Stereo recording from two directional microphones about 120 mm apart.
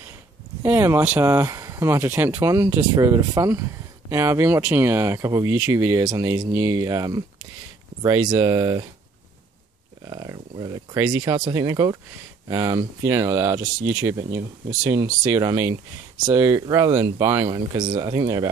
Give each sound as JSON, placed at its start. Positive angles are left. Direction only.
{"t": 0.6, "sound": "speech", "side_deg": -20}
{"t": 10.0, "sound": "speech", "side_deg": -35}